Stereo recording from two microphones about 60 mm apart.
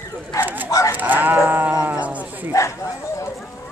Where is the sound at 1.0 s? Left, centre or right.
Right.